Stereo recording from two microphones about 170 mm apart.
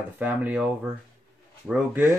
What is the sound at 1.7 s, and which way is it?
Speech, 10° right (ahead or behind).